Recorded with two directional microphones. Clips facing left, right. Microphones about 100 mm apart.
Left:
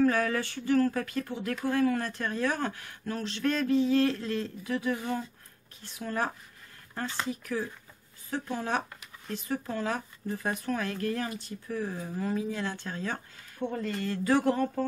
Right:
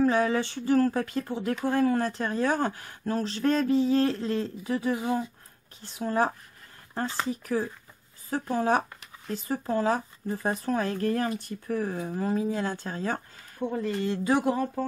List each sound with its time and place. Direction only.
0.0 s speech: 20° right (ahead or behind)
4.9 s speech: 15° right (ahead or behind)
5.8 s speech: 30° right (ahead or behind)
13.6 s speech: 10° right (ahead or behind)
14.4 s speech: 10° right (ahead or behind)